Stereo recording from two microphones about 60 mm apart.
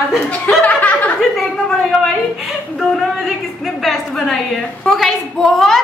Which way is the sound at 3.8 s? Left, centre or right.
Centre.